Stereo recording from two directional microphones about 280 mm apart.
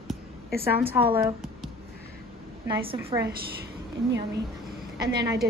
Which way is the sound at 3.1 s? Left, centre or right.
Centre.